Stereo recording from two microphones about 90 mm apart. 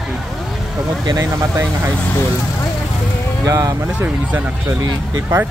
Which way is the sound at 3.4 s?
40° right (ahead or behind).